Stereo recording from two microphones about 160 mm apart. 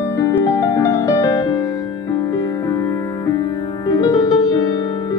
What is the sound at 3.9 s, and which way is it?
Music, 25° left (ahead or behind).